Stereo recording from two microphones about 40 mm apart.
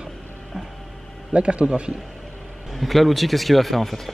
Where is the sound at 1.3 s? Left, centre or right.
Right.